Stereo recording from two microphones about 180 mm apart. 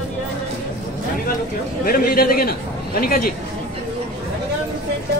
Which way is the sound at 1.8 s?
55° left (ahead or behind).